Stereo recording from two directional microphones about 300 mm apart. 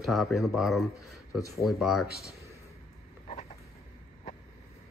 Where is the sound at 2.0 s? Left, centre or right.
Right.